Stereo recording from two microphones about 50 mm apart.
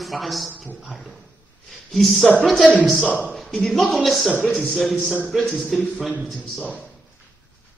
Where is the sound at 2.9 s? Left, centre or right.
Centre.